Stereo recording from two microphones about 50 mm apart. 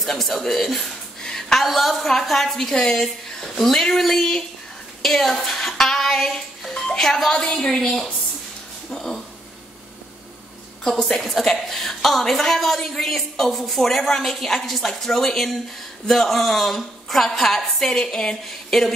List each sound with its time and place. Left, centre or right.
0.0 s a woman's voice: centre
1.6 s a woman's voice: centre
11.0 s a woman's voice: centre